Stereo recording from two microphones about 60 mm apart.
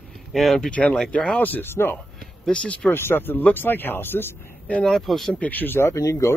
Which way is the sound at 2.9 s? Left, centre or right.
Left.